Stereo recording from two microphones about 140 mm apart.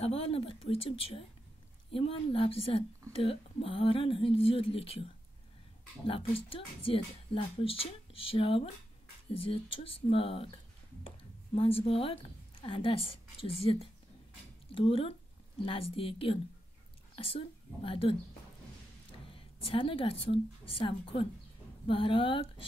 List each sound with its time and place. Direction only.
0.0 s speech: 45° left (ahead or behind)
19.3 s a woman's voice: 40° left (ahead or behind)